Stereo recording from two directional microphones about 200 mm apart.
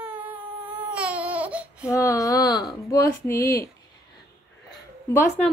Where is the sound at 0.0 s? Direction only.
5° right (ahead or behind).